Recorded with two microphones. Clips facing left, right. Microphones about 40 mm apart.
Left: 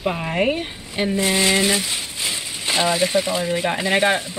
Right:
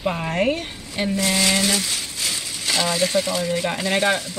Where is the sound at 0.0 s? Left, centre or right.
Centre.